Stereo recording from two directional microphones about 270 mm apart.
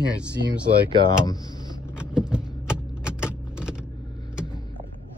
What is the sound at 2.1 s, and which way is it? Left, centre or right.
Typing, centre.